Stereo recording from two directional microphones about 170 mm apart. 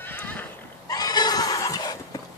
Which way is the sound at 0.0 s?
10° left (ahead or behind).